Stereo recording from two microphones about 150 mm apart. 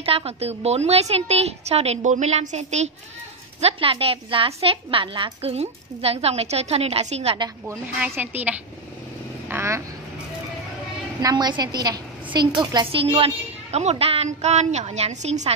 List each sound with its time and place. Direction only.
0.0 s a woman's voice: 40° right (ahead or behind)
3.6 s a woman's voice: 40° right (ahead or behind)
7.3 s a woman's voice: 25° right (ahead or behind)
8.0 s a woman's voice: 10° right (ahead or behind)
11.1 s a woman's voice: 30° right (ahead or behind); by 15.5 s 45° right (ahead or behind)